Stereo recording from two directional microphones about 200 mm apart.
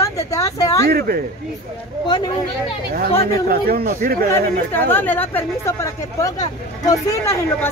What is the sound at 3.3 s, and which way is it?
Speech, 50° right (ahead or behind).